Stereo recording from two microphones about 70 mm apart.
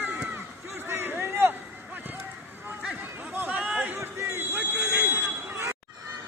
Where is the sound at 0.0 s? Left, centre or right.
Right.